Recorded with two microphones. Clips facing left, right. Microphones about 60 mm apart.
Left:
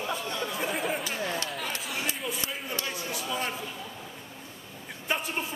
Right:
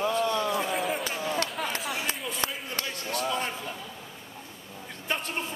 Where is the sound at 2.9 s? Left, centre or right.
Centre.